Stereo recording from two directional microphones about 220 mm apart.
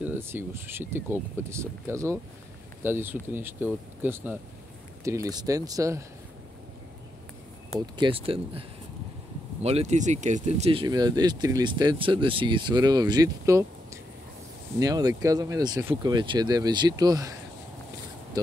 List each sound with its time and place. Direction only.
0.0 s speech: 10° right (ahead or behind)
7.8 s speech: 20° right (ahead or behind)
14.8 s speech: 15° right (ahead or behind)